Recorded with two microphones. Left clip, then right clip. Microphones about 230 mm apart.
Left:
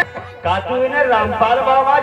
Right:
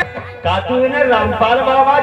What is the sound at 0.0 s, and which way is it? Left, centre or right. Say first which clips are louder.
Speech: right 1 dB; left.